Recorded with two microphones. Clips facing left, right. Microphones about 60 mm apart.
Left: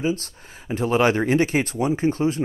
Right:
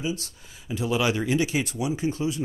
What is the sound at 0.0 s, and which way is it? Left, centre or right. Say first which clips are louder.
Speech: left 6 dB; left.